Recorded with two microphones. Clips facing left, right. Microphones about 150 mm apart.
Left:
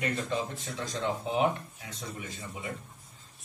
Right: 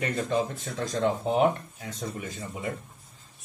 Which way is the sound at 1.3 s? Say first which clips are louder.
Right 3 dB; 45° right (ahead or behind).